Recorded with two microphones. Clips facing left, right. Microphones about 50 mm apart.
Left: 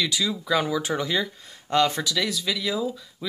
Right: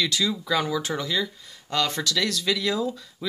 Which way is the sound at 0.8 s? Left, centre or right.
Left.